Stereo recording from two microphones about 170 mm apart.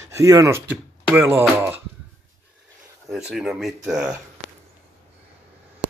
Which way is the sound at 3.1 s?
5° right (ahead or behind).